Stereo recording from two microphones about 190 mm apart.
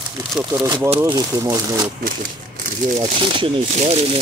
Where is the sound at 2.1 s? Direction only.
45° right (ahead or behind).